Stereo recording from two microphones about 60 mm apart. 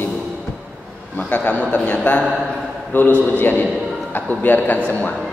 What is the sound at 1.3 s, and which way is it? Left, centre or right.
A man's voice, left.